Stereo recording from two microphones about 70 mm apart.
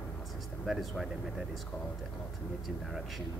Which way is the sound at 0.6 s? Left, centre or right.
Centre.